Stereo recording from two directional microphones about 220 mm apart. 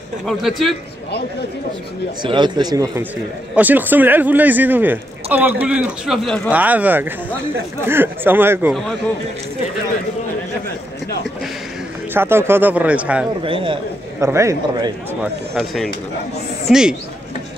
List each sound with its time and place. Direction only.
0.3 s a man's voice: centre (ahead or behind)
2.2 s speech: 20° right (ahead or behind)
12.1 s speech: 10° right (ahead or behind)
13.4 s speech: 25° right (ahead or behind)
14.2 s speech: 15° right (ahead or behind)
15.5 s a man's voice: centre (ahead or behind)